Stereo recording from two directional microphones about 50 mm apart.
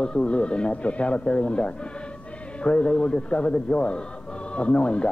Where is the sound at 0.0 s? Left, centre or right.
Centre.